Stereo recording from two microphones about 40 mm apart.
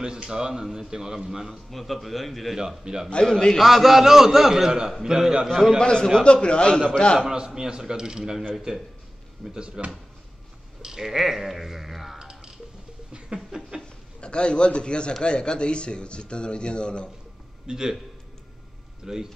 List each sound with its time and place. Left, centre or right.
0.0 s a man's voice: right
1.7 s a man's voice: centre
2.8 s a man's voice: centre
3.3 s a man's voice: centre
3.5 s a man's voice: centre
5.8 s speech: centre
7.2 s a man's voice: centre
9.4 s speech: centre
10.8 s speech: centre
13.1 s a sound: centre
14.2 s speech: left
17.6 s a man's voice: centre
19.1 s a man's voice: centre